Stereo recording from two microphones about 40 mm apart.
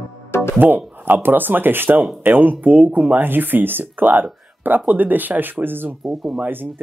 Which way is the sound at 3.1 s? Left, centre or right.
Right.